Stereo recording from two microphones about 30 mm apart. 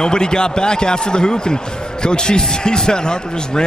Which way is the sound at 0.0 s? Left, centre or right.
Left.